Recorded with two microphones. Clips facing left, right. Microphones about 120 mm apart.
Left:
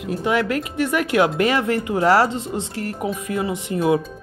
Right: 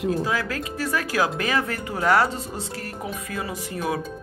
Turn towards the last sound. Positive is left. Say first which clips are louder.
# left 8 dB
turn(degrees=20)  # may be behind; listen again after turning